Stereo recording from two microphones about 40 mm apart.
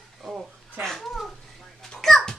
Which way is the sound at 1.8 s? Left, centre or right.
Centre.